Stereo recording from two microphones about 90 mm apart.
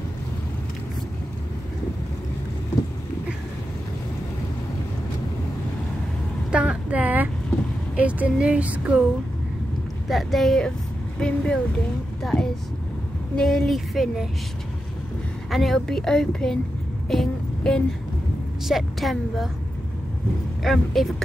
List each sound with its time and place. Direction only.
6.5 s a sound: 10° right (ahead or behind)
10.0 s a woman's voice: centre (ahead or behind)
15.5 s a woman's voice: centre (ahead or behind)
17.1 s vehicle: 5° left (ahead or behind)
18.7 s a woman's voice: centre (ahead or behind)
20.6 s a woman's voice: centre (ahead or behind)